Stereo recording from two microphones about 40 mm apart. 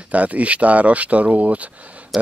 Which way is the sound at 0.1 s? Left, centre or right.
Right.